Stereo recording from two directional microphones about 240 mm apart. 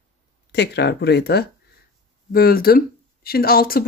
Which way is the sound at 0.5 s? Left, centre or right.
Left.